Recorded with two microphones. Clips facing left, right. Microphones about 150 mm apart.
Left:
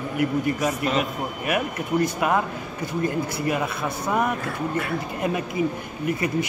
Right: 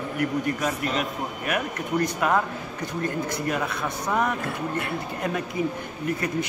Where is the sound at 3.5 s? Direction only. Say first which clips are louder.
Left 2 dB; 10° left (ahead or behind).